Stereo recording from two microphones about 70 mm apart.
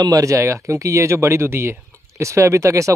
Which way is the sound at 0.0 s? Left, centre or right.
Right.